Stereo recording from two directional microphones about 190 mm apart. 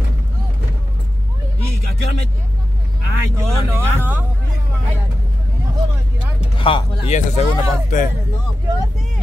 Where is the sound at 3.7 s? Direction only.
10° right (ahead or behind).